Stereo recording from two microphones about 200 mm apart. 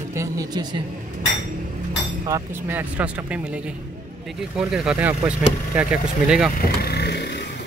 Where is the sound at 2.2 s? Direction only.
15° right (ahead or behind).